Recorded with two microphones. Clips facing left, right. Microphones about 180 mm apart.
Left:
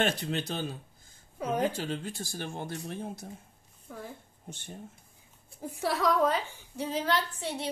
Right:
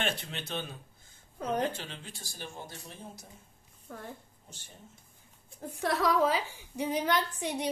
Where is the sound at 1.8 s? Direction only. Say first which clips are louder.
Left 10 dB; 45° left (ahead or behind); by 3.3 s 60° left (ahead or behind).